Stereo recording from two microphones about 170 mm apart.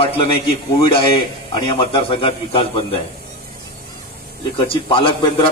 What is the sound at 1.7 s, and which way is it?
A man's voice, 30° left (ahead or behind).